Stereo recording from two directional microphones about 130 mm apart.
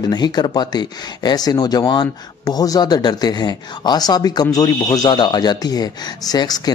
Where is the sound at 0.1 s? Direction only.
35° left (ahead or behind).